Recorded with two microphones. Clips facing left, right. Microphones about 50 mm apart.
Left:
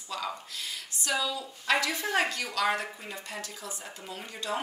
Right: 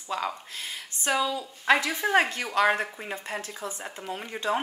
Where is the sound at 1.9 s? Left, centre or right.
Centre.